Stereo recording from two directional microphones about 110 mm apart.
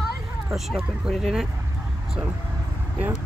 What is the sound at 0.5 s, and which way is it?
Speech, centre (ahead or behind).